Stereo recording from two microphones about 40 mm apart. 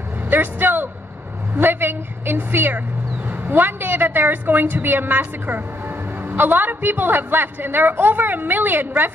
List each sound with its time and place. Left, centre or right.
0.3 s vehicle: right
1.5 s a woman's voice: right